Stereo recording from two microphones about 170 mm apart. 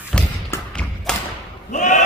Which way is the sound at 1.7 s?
45° left (ahead or behind).